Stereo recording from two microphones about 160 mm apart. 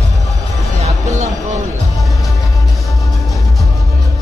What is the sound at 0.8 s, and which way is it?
Music, 45° right (ahead or behind).